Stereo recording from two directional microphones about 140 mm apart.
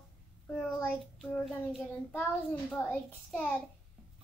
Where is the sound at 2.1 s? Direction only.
10° left (ahead or behind).